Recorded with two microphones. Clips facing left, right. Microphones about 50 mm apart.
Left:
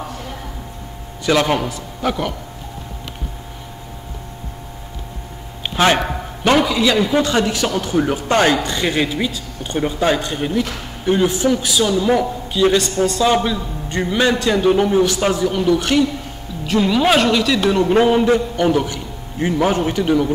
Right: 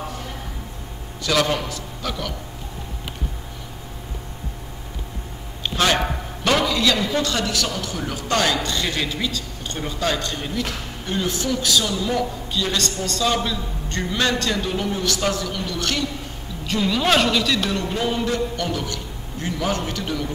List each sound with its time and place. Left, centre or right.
1.2 s speech: left
5.6 s a sound: left
6.6 s a man's voice: centre
14.7 s a man's voice: left
17.8 s speech: left